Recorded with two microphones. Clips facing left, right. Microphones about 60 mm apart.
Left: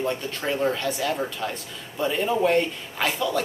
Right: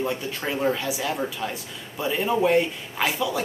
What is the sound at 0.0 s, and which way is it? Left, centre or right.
A man's voice, centre.